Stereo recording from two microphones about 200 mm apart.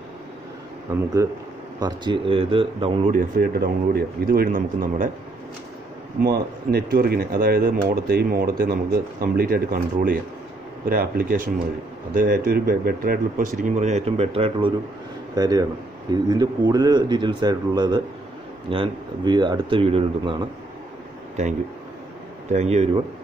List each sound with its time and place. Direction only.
1.2 s speech: 15° right (ahead or behind)
3.1 s speech: 45° right (ahead or behind)
6.2 s speech: 50° right (ahead or behind); by 20.3 s 30° right (ahead or behind)
22.5 s speech: 35° right (ahead or behind)